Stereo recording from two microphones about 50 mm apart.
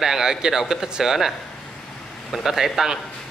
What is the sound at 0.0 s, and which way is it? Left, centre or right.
Speech, centre.